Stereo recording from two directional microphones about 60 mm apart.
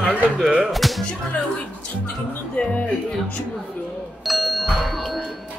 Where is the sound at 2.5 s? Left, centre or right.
Centre.